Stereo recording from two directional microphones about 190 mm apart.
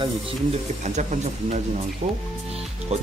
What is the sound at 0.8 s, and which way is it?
Speech, 40° right (ahead or behind).